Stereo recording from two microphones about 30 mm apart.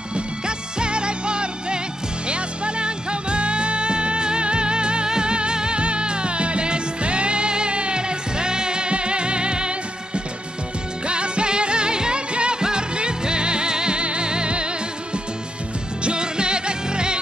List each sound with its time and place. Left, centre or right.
0.1 s music: right
16.0 s music: right